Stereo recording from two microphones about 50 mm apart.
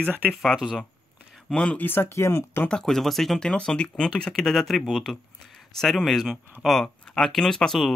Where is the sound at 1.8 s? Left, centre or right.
Left.